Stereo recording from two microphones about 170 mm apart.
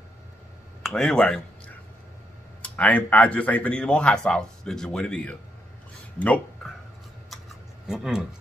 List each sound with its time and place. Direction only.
0.8 s speech: 5° left (ahead or behind)
2.6 s speech: 10° left (ahead or behind)
7.8 s speech: 5° right (ahead or behind)